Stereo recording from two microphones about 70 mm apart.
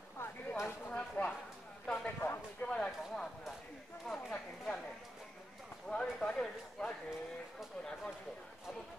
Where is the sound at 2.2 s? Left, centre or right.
Left.